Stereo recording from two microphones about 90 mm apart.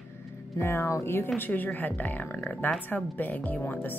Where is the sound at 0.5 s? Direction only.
30° left (ahead or behind).